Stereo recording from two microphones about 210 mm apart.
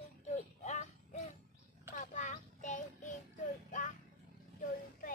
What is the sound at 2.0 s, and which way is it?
Child singing, 35° left (ahead or behind).